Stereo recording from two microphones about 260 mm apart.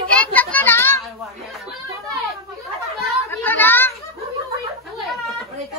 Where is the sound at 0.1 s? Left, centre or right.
Centre.